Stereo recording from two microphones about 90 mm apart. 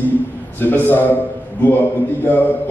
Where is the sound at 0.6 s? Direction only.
20° left (ahead or behind).